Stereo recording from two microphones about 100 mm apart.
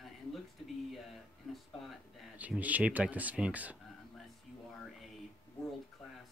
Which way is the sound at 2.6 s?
15° right (ahead or behind).